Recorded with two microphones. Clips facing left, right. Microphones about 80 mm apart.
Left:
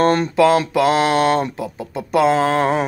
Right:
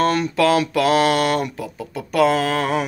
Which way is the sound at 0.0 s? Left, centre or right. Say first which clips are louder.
Left 3 dB; left.